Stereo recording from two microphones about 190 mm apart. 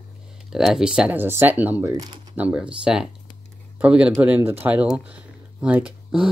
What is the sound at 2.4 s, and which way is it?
Speech, 5° right (ahead or behind).